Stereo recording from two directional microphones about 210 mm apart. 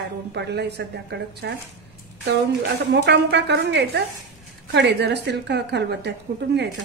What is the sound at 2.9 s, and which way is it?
A woman's voice, 55° right (ahead or behind).